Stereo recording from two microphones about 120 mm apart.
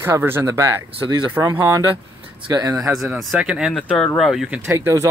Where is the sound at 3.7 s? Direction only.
5° left (ahead or behind).